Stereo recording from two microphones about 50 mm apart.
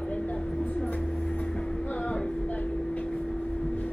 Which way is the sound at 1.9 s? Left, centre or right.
Left.